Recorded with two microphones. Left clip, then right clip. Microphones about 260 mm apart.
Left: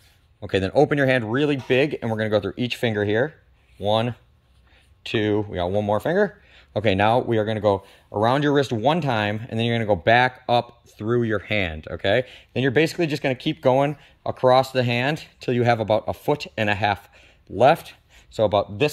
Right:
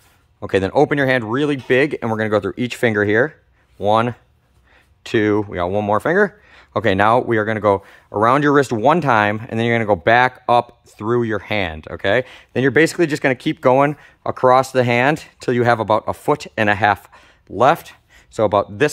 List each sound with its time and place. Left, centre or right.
0.5 s speech: centre